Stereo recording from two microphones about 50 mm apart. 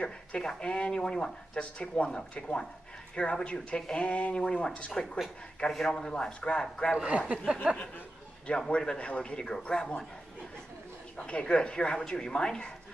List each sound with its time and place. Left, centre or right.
0.0 s speech: centre
7.1 s speech: right
8.5 s speech: centre
11.1 s speech: left